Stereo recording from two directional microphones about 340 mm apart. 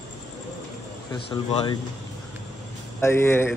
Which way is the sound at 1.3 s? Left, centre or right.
Centre.